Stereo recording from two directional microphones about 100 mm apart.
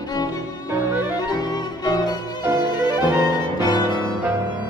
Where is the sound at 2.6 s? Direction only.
45° left (ahead or behind).